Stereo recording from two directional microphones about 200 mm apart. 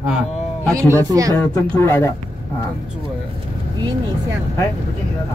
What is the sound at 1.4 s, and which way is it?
Speech, 10° left (ahead or behind).